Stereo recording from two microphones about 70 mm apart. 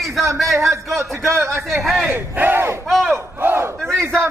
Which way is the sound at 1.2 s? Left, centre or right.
Right.